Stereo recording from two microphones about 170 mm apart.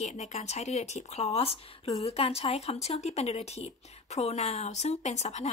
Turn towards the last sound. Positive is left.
turn(degrees=40)  # may be behind; listen again after turning